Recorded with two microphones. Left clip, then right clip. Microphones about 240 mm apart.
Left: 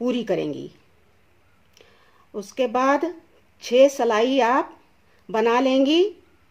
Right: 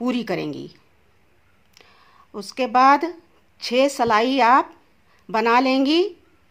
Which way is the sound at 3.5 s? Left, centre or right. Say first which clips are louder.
Left 3 dB; right.